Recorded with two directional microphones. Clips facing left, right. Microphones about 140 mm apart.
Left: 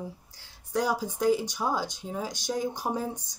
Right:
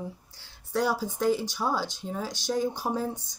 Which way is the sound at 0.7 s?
15° left (ahead or behind).